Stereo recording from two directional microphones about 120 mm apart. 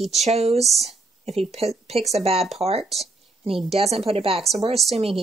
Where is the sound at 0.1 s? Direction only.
65° right (ahead or behind).